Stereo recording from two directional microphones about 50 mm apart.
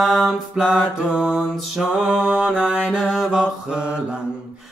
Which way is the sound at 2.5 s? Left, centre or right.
Right.